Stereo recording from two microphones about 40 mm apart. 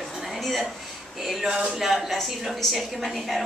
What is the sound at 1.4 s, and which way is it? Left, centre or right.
Speech, right.